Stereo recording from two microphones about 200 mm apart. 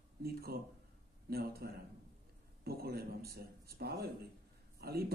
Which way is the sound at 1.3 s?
50° right (ahead or behind).